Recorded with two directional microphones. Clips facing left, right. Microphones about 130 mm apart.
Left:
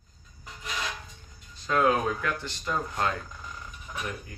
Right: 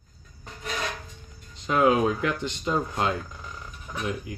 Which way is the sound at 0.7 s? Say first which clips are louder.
Right 3 dB; 60° right (ahead or behind).